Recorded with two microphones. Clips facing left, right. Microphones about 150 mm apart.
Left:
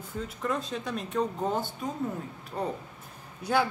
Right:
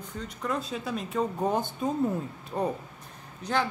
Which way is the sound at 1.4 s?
20° right (ahead or behind).